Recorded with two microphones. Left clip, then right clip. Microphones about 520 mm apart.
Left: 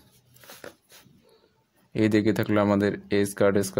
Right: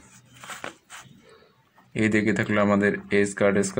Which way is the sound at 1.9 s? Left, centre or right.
Left.